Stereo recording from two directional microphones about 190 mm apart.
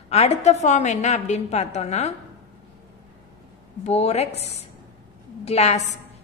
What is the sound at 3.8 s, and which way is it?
A woman's voice, 35° left (ahead or behind).